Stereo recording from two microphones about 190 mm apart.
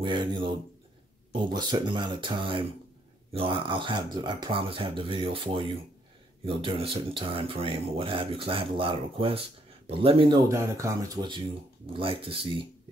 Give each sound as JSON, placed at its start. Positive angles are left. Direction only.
{"t": 0.0, "sound": "speech", "side_deg": -25}
{"t": 10.5, "sound": "speech", "side_deg": -15}